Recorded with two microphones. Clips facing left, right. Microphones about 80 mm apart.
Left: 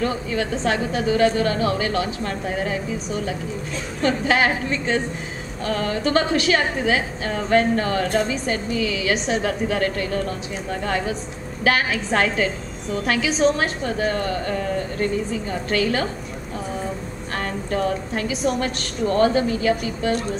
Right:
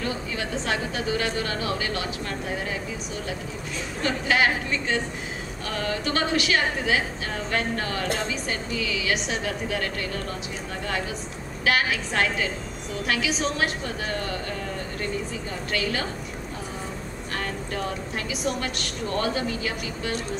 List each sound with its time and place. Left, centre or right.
0.4 s a woman's voice: left
4.0 s a woman's voice: left
6.1 s a woman's voice: left
11.6 s a woman's voice: left
15.7 s a woman's voice: left
18.1 s a woman's voice: left